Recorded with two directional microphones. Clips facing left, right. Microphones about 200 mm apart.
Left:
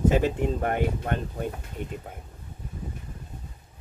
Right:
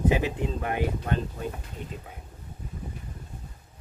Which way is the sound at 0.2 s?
50° left (ahead or behind).